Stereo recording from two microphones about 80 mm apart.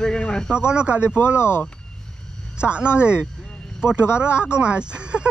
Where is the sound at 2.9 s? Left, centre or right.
Centre.